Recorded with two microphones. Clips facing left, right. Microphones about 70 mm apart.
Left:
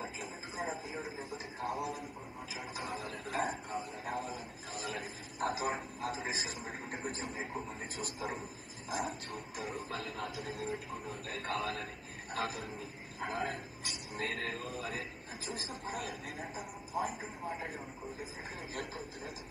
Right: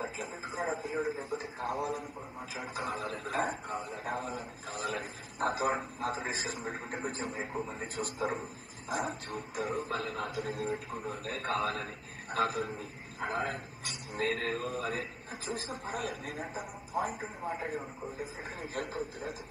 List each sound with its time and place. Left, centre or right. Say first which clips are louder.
0.0 s speech: right 4 dB; right